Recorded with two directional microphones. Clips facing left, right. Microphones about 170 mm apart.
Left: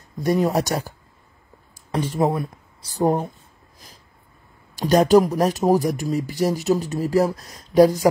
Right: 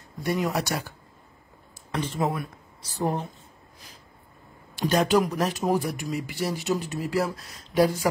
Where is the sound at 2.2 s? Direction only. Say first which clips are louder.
Left 8 dB; 30° left (ahead or behind).